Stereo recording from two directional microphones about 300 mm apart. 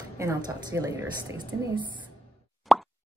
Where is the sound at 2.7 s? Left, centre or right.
Centre.